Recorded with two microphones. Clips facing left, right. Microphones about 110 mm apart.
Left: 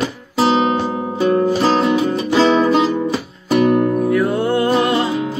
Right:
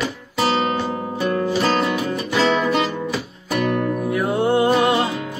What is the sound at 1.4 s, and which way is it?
Music, 30° left (ahead or behind).